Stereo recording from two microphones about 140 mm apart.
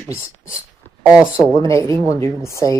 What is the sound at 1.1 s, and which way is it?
Speech, 5° right (ahead or behind).